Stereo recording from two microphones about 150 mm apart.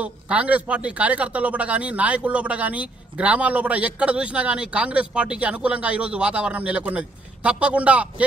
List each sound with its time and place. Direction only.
0.0 s speech: 10° right (ahead or behind)